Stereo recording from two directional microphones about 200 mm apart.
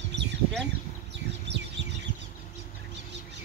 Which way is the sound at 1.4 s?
60° right (ahead or behind).